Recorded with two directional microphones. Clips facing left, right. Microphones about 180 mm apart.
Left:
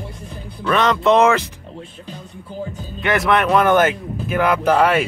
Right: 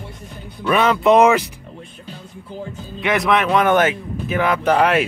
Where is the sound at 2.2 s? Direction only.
Centre (ahead or behind).